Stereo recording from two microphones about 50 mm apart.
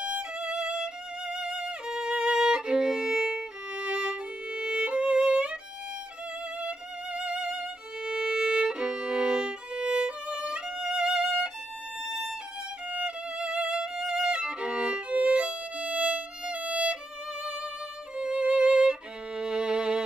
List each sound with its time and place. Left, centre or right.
0.0 s violin: right
6.6 s violin: right; by 12.4 s centre
12.9 s violin: centre
18.1 s music: centre